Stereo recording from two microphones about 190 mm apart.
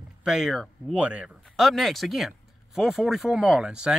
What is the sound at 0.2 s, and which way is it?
Speech, 5° right (ahead or behind).